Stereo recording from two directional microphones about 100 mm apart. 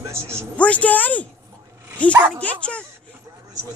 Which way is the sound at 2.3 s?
10° left (ahead or behind).